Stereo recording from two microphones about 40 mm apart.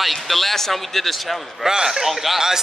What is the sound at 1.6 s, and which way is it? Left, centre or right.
Speech, centre.